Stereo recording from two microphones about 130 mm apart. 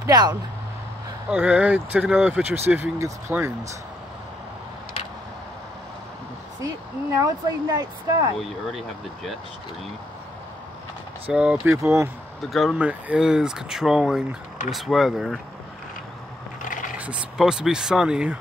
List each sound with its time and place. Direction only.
0.0 s speech: 30° right (ahead or behind)
1.3 s speech: 10° right (ahead or behind)
6.6 s speech: 25° right (ahead or behind)
8.4 s speech: centre (ahead or behind)
11.3 s speech: 5° right (ahead or behind)
11.6 s speech: 20° right (ahead or behind)
12.4 s speech: centre (ahead or behind)
16.6 s a sound: 90° left
17.0 s speech: 5° right (ahead or behind)